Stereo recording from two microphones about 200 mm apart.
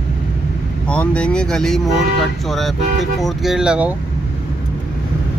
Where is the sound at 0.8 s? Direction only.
5° left (ahead or behind).